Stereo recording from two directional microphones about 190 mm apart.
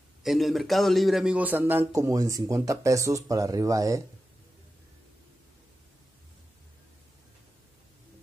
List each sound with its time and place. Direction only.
0.2 s a man's voice: centre (ahead or behind); by 4.0 s 15° right (ahead or behind)